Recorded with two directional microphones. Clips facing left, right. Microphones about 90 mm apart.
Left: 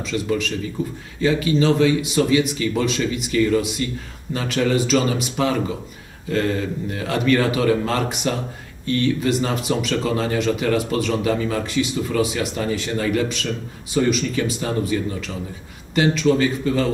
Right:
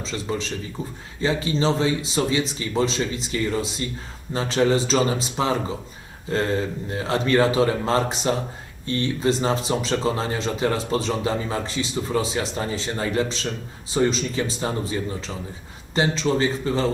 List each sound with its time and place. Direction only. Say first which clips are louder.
0.0 s speech: left 5 dB; 30° right (ahead or behind)